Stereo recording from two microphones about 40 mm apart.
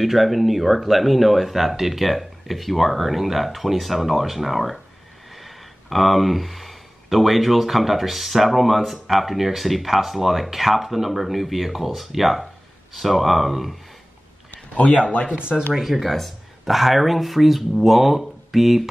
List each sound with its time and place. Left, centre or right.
0.0 s speech: centre
14.5 s a sound: left
15.3 s speech: right
15.7 s speech: centre